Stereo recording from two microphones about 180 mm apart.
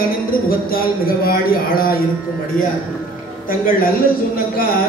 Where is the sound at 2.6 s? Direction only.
50° left (ahead or behind).